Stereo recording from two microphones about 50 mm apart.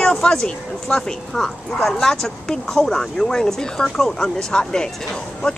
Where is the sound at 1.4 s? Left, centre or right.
Centre.